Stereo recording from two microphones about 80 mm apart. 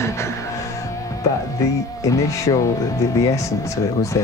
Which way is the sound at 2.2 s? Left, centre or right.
Left.